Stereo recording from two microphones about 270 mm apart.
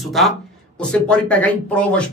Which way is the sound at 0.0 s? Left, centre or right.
Centre.